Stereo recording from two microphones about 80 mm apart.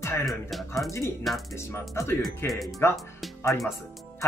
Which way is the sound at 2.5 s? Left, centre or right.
Centre.